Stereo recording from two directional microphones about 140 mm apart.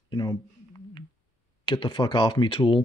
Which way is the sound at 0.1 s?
30° left (ahead or behind).